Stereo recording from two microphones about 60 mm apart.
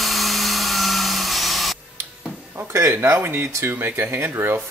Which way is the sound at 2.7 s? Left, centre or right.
Right.